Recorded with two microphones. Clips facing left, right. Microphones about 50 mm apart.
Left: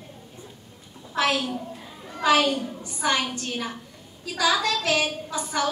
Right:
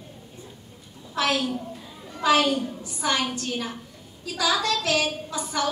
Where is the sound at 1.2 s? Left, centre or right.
Centre.